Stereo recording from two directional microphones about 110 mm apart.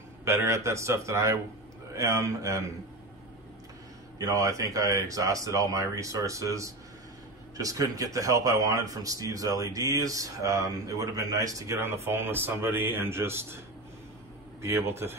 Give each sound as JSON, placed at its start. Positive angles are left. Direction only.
{"t": 0.2, "sound": "a man's voice", "side_deg": -25}
{"t": 4.2, "sound": "a man's voice", "side_deg": -30}
{"t": 14.6, "sound": "a man's voice", "side_deg": -25}